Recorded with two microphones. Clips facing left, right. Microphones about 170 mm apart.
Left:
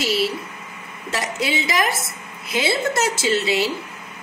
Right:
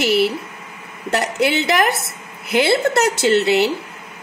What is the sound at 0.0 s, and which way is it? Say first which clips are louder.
Speech: right 5 dB; 60° right (ahead or behind).